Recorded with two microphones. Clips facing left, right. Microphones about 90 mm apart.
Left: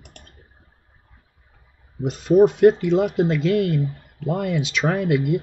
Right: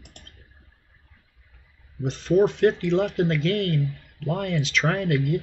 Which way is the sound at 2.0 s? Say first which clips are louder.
Left 5 dB; 15° left (ahead or behind).